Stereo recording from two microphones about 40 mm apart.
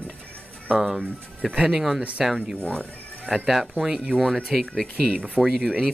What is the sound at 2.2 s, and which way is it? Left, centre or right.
Speech, centre.